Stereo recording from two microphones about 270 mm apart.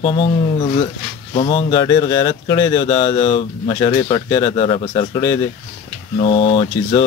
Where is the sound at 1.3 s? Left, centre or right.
Left.